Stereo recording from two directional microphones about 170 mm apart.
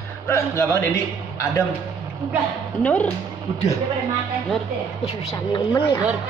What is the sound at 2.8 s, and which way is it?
Speech, 10° left (ahead or behind).